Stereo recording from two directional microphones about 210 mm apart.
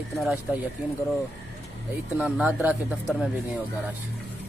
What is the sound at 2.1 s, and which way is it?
Speech, 5° right (ahead or behind).